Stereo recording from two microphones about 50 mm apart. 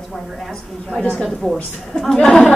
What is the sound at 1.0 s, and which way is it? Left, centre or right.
Speech, left.